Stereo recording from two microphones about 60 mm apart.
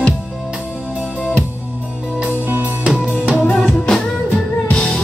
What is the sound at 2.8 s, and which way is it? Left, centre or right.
Music, centre.